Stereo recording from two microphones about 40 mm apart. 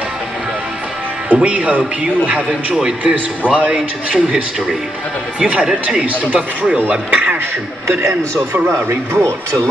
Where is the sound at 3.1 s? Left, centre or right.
Right.